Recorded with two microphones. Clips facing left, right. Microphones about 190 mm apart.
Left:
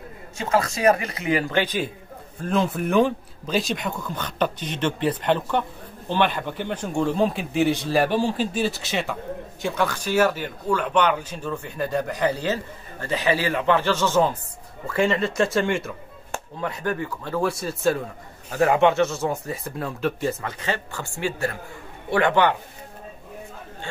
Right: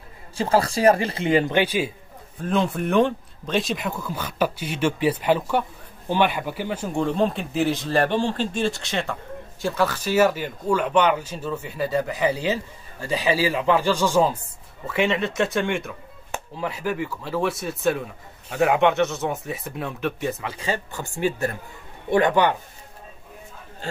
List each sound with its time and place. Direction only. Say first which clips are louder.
0.4 s a man's voice: right 2 dB; 30° right (ahead or behind); by 1.9 s 10° right (ahead or behind)
2.3 s speech: even; centre (ahead or behind)
14.9 s speech: left 1 dB; centre (ahead or behind)
20.6 s speech: right 1 dB; 20° right (ahead or behind)